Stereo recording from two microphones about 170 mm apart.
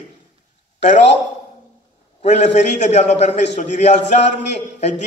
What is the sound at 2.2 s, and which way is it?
A man's voice, 40° left (ahead or behind).